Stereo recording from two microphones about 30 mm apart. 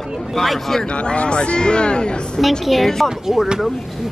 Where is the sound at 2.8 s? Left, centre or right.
Centre.